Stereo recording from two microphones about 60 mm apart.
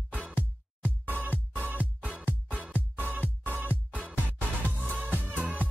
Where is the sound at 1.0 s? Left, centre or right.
Right.